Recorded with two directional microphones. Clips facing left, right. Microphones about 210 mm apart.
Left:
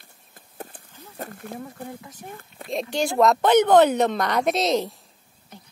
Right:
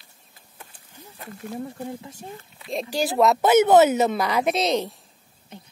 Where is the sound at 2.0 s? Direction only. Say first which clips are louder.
Right 2 dB; 25° right (ahead or behind).